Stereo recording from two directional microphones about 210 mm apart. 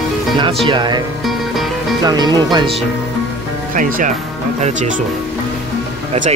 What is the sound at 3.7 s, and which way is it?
Speech, 40° right (ahead or behind).